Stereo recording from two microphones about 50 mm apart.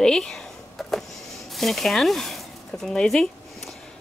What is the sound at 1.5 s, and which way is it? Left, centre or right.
Speech, centre.